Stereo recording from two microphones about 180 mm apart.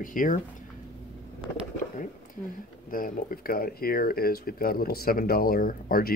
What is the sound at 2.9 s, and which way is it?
Speech, 50° left (ahead or behind).